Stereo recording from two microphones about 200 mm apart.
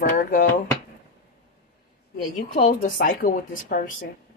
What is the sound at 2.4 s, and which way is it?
Speech, 40° left (ahead or behind).